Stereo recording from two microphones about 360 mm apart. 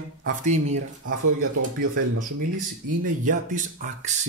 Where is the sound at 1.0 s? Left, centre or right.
Right.